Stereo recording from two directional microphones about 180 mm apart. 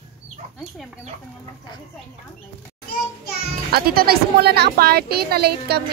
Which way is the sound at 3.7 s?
55° right (ahead or behind).